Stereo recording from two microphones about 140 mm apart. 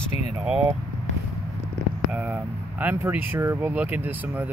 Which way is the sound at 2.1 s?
10° right (ahead or behind).